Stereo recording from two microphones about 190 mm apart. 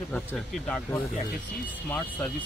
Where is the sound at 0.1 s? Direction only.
5° left (ahead or behind).